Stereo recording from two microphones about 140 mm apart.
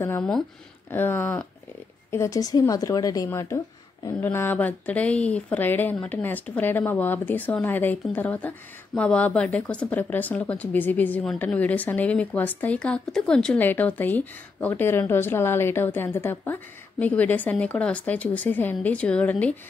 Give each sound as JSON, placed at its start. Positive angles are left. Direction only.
{"t": 0.8, "sound": "speech", "side_deg": 15}